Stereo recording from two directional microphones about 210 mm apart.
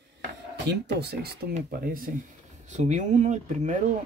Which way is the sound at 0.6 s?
50° right (ahead or behind).